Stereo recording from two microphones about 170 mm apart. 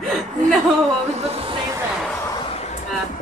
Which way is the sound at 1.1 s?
35° right (ahead or behind).